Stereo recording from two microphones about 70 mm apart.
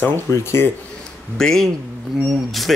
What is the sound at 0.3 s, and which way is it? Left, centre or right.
Speech, left.